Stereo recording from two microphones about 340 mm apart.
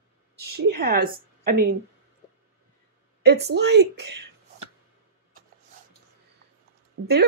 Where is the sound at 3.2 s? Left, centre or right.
Right.